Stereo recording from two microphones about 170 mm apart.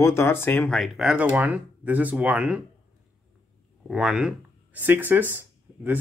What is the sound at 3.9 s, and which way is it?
Speech, 5° right (ahead or behind).